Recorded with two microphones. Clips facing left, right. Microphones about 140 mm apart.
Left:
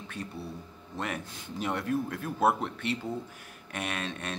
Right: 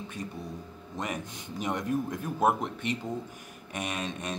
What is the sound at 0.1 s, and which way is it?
Speech, 15° right (ahead or behind).